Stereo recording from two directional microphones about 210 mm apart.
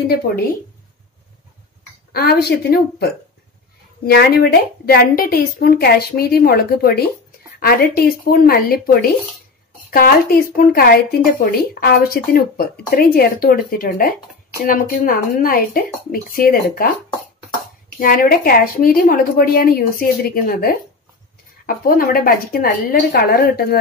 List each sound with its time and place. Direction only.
2.1 s speech: 50° left (ahead or behind)
17.9 s speech: 40° left (ahead or behind)